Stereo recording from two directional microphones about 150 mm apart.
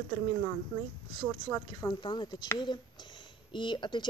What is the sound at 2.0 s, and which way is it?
Speech, 30° left (ahead or behind).